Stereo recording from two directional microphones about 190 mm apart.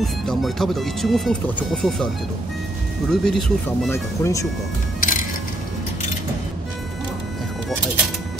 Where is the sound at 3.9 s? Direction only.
15° left (ahead or behind).